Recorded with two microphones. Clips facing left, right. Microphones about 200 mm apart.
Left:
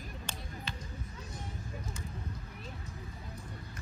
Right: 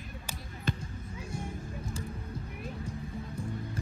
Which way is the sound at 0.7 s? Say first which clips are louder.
Right 14 dB; 50° right (ahead or behind).